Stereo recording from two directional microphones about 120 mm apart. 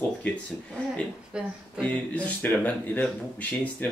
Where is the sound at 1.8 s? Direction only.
10° left (ahead or behind).